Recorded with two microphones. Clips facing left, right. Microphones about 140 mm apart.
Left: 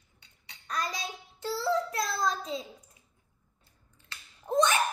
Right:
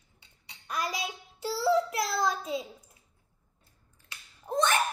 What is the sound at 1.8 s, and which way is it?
Child singing, 25° right (ahead or behind).